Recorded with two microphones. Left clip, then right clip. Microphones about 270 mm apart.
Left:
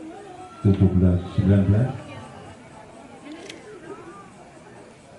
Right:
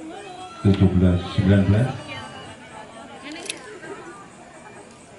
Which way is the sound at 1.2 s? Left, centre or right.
Centre.